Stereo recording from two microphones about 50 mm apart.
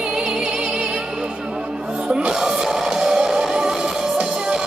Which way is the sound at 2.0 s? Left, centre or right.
Right.